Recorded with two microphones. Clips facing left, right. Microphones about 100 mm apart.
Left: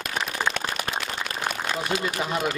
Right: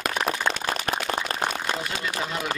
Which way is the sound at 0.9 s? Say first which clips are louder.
Right 3 dB; 45° right (ahead or behind).